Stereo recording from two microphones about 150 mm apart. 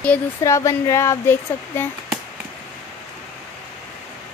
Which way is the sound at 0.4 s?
20° left (ahead or behind).